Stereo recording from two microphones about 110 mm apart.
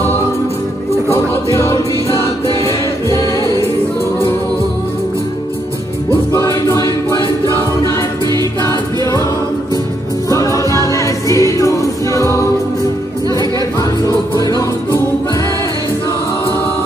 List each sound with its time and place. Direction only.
1.1 s music: 25° left (ahead or behind)
6.0 s music: 25° left (ahead or behind)
8.6 s music: 30° left (ahead or behind)
10.3 s music: 30° left (ahead or behind)